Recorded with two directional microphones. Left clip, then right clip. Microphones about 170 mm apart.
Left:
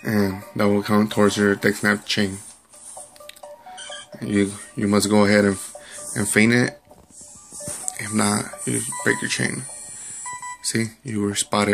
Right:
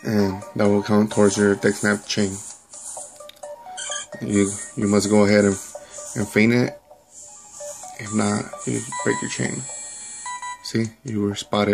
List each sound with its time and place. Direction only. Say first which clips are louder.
0.0 s speech: right 1 dB; 10° right (ahead or behind)
3.3 s music: right 3 dB; 15° right (ahead or behind)
6.1 s speech: left 1 dB; 5° right (ahead or behind)
7.9 s telephone dialing: left 1 dB; 10° right (ahead or behind)
8.9 s speech: left 2 dB; 15° right (ahead or behind)
10.6 s speech: left 1 dB; 20° right (ahead or behind)